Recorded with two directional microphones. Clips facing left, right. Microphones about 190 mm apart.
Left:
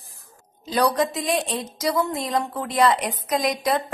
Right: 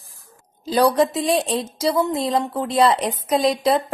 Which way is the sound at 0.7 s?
30° right (ahead or behind).